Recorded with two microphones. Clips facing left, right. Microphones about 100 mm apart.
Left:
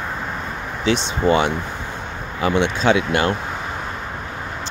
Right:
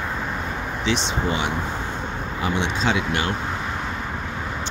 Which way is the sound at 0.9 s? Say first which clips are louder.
Left 7 dB; 55° left (ahead or behind).